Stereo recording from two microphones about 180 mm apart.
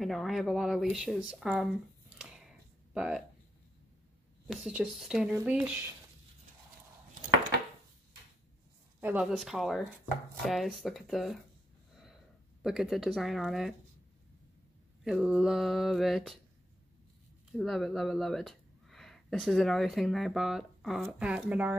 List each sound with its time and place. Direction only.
0.0 s speech: centre (ahead or behind)
4.5 s speech: 5° right (ahead or behind)
9.0 s speech: 5° right (ahead or behind)
12.6 s speech: centre (ahead or behind)
15.0 s speech: centre (ahead or behind)
17.5 s speech: centre (ahead or behind)